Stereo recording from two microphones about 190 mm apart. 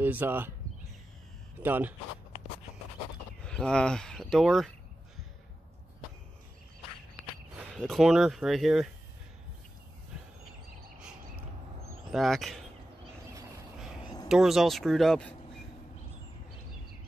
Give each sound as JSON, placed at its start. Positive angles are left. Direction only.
{"t": 0.0, "sound": "speech", "side_deg": -10}
{"t": 1.6, "sound": "speech", "side_deg": -10}
{"t": 3.4, "sound": "speech", "side_deg": 5}
{"t": 7.7, "sound": "speech", "side_deg": 0}
{"t": 12.1, "sound": "speech", "side_deg": 0}
{"t": 14.0, "sound": "a sound", "side_deg": 25}
{"t": 14.3, "sound": "speech", "side_deg": 0}